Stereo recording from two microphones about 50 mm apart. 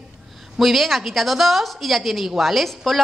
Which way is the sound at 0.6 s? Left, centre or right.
Centre.